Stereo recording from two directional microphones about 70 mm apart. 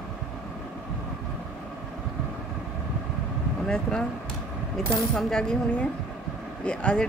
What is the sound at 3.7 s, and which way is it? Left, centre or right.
Speech, centre.